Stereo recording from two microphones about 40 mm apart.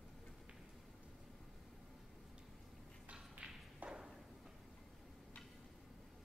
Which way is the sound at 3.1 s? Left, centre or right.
Right.